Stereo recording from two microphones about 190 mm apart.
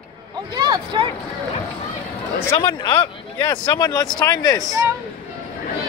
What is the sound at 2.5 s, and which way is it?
Speech, 25° left (ahead or behind).